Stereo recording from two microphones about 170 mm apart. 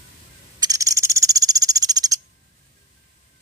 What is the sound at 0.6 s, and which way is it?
Owl, 20° right (ahead or behind).